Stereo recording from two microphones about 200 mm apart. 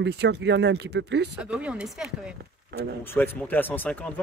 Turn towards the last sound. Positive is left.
turn(degrees=5)  # may be behind; listen again after turning